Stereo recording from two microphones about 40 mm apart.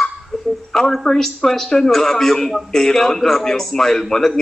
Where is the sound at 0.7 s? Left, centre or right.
Centre.